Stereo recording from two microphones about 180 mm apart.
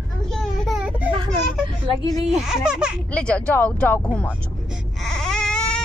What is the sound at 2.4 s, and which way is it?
Speech, 5° right (ahead or behind).